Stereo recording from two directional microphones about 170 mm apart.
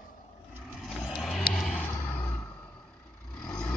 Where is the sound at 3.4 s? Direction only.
5° left (ahead or behind).